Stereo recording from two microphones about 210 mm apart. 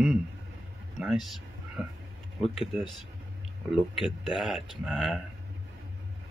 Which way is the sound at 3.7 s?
5° right (ahead or behind).